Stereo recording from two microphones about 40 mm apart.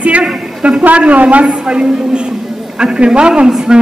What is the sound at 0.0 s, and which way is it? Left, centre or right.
A woman's voice, right.